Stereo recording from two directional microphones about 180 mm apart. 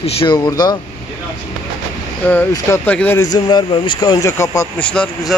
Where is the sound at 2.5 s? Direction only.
10° left (ahead or behind).